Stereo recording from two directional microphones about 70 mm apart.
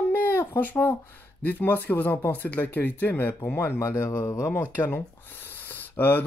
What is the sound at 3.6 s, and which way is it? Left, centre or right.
Speech, left.